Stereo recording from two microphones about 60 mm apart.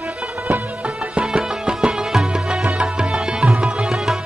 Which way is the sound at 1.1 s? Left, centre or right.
Centre.